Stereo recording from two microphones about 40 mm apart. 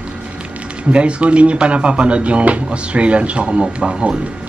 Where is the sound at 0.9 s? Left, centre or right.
Right.